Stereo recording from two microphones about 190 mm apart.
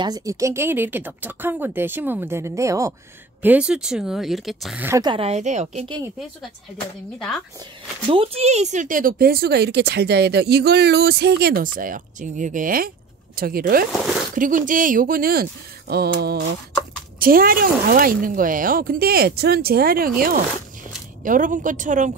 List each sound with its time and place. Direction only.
0.0 s speech: 20° right (ahead or behind)
3.4 s speech: 5° right (ahead or behind)
5.0 s a woman's voice: 30° right (ahead or behind)
8.1 s speech: 30° right (ahead or behind); by 15.4 s 50° right (ahead or behind)
15.9 s mantra: 55° right (ahead or behind)
17.2 s speech: 50° right (ahead or behind)